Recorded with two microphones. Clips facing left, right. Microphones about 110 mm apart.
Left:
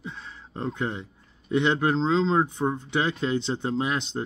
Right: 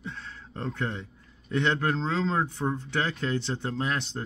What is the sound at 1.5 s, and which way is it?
Speech, 15° left (ahead or behind).